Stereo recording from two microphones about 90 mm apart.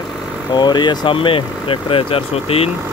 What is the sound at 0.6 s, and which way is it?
Speech, 55° left (ahead or behind).